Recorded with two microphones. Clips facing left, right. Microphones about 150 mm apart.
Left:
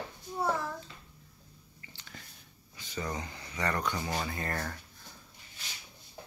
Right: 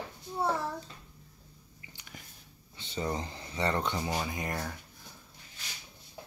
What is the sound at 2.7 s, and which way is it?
Speech, 30° right (ahead or behind).